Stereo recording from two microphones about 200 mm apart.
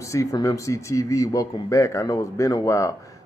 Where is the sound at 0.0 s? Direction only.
15° left (ahead or behind).